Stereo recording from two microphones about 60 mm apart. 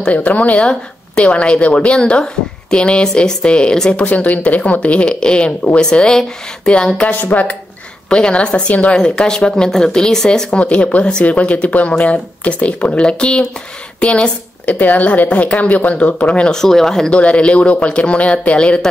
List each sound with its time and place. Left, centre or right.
0.0 s a woman's voice: left
7.1 s a woman's voice: left
8.1 s a woman's voice: centre
10.6 s a woman's voice: left
16.4 s a woman's voice: centre